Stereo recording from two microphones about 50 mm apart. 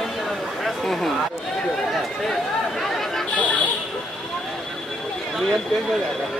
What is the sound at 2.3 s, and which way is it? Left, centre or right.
Chatter, centre.